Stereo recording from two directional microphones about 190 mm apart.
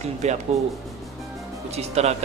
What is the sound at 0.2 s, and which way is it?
Speech, 35° right (ahead or behind).